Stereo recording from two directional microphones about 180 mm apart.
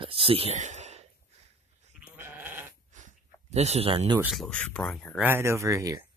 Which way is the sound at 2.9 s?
40° right (ahead or behind).